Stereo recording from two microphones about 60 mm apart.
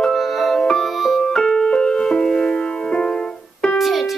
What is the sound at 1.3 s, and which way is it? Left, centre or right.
Music, centre.